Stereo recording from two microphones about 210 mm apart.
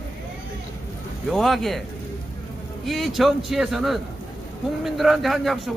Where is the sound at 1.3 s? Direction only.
Centre (ahead or behind).